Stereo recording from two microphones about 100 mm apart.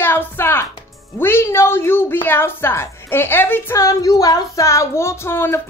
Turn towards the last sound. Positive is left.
turn(degrees=25)  # may be behind; listen again after turning